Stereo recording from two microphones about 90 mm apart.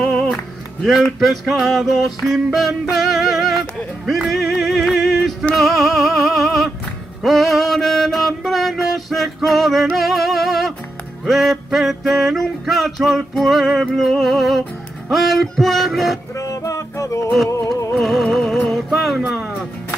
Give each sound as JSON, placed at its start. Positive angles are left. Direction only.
{"t": 0.0, "sound": "music", "side_deg": 5}
{"t": 1.2, "sound": "a sound", "side_deg": 0}
{"t": 5.6, "sound": "music", "side_deg": 0}
{"t": 11.2, "sound": "a sound", "side_deg": 0}
{"t": 16.3, "sound": "music", "side_deg": 35}
{"t": 17.9, "sound": "music", "side_deg": 0}